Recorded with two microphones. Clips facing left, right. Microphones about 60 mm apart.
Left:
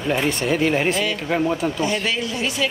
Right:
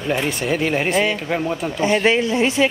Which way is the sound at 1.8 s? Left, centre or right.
Right.